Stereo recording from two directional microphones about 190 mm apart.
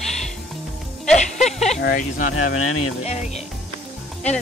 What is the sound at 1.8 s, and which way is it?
Speech, 50° left (ahead or behind).